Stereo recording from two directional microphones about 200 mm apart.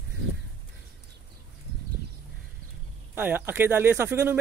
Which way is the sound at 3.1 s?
10° right (ahead or behind).